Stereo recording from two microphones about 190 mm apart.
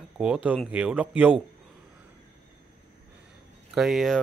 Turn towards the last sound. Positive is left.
turn(degrees=0)  # may be behind; listen again after turning